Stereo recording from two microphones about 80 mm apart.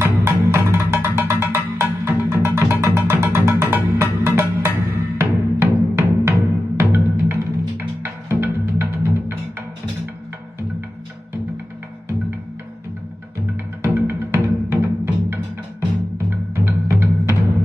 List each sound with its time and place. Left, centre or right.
0.2 s music: right
13.8 s music: right
16.3 s timpani: right